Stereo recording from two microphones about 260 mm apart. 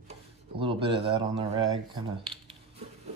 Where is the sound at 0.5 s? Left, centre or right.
Centre.